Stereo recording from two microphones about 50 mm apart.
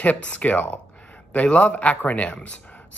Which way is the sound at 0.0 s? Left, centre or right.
Left.